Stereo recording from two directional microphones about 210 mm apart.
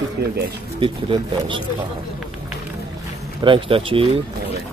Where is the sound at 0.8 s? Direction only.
25° right (ahead or behind).